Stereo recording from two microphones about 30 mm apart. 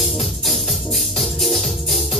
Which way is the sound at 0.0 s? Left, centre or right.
Centre.